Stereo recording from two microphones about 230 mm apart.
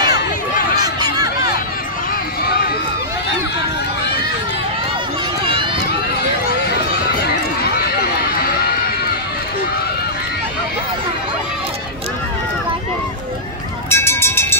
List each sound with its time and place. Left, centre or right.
1.0 s a sound: centre
8.4 s run: left
13.8 s run: centre